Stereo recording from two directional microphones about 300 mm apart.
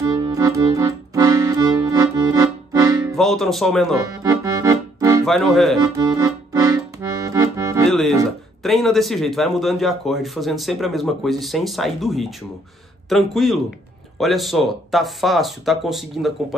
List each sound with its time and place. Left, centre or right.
0.0 s accordion: centre
3.2 s a man's voice: centre
4.0 s accordion: centre
5.2 s a man's voice: centre
5.8 s accordion: centre
7.9 s a man's voice: centre